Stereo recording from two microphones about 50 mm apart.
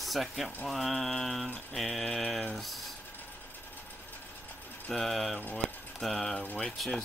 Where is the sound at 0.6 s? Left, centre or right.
Centre.